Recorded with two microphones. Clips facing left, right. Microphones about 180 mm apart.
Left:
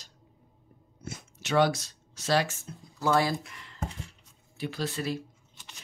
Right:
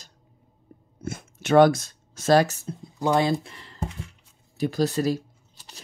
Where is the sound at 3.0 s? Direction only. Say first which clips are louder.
Right 4 dB; 20° right (ahead or behind).